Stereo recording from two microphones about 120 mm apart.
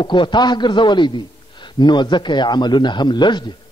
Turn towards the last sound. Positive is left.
turn(degrees=40)  # may be behind; listen again after turning